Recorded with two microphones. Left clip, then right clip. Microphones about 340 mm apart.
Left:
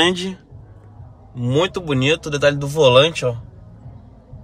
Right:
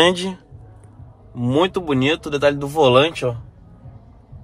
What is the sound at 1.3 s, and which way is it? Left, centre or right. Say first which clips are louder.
Speech: right 1 dB; centre.